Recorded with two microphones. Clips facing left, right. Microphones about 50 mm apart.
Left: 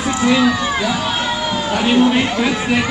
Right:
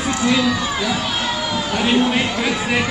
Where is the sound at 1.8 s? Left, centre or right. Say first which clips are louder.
Left 4 dB; centre.